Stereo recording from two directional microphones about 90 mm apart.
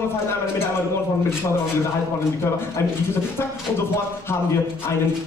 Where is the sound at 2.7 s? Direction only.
30° left (ahead or behind).